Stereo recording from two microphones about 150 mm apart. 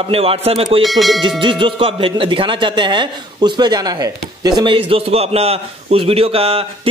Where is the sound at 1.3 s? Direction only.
35° right (ahead or behind).